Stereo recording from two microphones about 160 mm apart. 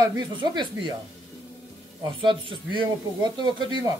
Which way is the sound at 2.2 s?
30° right (ahead or behind).